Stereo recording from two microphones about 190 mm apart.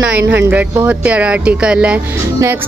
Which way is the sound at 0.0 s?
10° right (ahead or behind).